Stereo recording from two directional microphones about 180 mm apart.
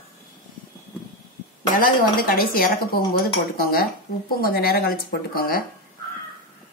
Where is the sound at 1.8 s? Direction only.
50° left (ahead or behind).